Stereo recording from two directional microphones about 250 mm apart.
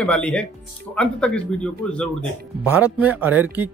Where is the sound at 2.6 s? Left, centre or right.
Centre.